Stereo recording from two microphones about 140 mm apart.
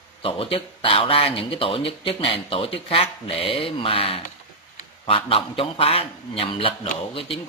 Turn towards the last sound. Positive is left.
turn(degrees=40)  # may be behind; listen again after turning